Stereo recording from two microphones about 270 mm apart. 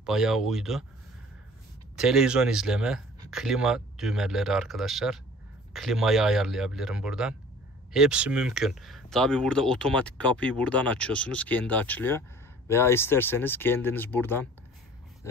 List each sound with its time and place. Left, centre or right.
0.0 s speech: centre
2.0 s speech: centre